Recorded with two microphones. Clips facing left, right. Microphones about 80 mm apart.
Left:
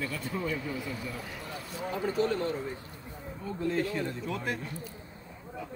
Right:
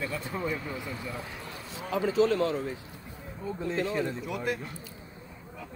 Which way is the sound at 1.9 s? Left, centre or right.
Right.